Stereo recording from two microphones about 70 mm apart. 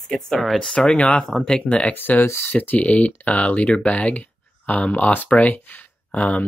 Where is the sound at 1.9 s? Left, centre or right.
Left.